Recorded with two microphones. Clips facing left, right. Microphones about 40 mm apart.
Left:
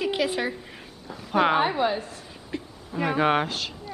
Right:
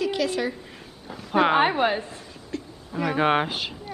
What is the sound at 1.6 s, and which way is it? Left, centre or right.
Speech, right.